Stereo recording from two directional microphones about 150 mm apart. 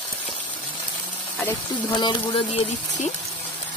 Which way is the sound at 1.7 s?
30° left (ahead or behind).